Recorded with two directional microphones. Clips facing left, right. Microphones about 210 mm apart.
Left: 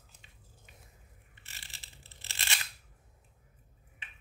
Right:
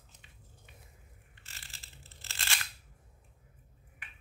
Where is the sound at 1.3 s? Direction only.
20° left (ahead or behind).